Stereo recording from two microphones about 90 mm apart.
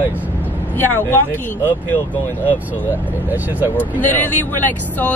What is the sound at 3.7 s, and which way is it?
Speech, 20° left (ahead or behind).